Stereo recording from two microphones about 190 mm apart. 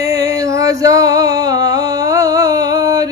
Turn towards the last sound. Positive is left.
turn(degrees=-20)  # may be behind; listen again after turning